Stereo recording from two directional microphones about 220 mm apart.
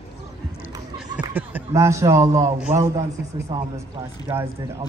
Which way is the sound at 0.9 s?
5° right (ahead or behind).